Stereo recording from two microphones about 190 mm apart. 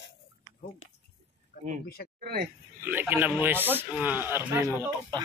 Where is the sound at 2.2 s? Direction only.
50° right (ahead or behind).